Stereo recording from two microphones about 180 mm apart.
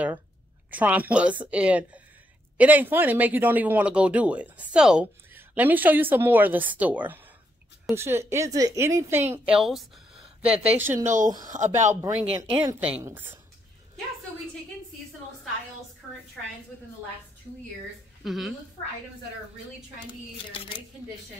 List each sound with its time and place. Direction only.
0.7 s speech: 10° right (ahead or behind)
11.1 s speech: 45° right (ahead or behind)
12.0 s speech: 15° right (ahead or behind)
18.2 s a woman's voice: centre (ahead or behind)
20.5 s speech: 25° left (ahead or behind)